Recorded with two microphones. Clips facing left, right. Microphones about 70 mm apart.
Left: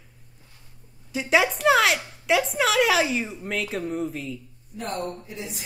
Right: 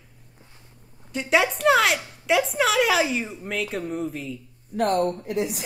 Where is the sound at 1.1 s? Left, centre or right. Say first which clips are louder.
Even; centre.